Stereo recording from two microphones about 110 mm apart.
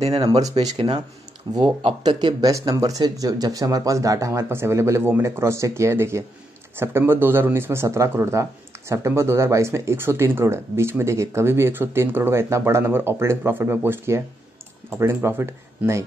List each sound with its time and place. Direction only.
0.0 s speech: 55° right (ahead or behind)
0.3 s speech: 35° right (ahead or behind)